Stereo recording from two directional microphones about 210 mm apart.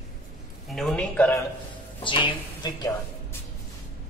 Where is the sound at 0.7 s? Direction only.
5° left (ahead or behind).